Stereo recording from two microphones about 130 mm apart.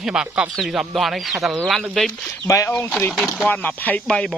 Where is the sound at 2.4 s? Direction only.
20° left (ahead or behind).